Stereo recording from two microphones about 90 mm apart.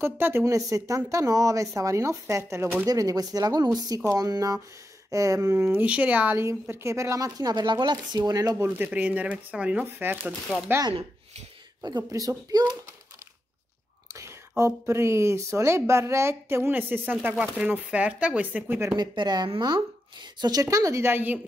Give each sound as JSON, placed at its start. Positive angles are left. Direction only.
{"t": 0.0, "sound": "speech", "side_deg": -25}
{"t": 0.5, "sound": "speech", "side_deg": -35}
{"t": 2.9, "sound": "speech", "side_deg": -45}
{"t": 6.7, "sound": "speech", "side_deg": -30}
{"t": 8.7, "sound": "speech", "side_deg": -20}
{"t": 12.1, "sound": "speech", "side_deg": -40}
{"t": 14.6, "sound": "speech", "side_deg": -30}
{"t": 18.9, "sound": "speech", "side_deg": -50}
{"t": 20.6, "sound": "speech", "side_deg": -35}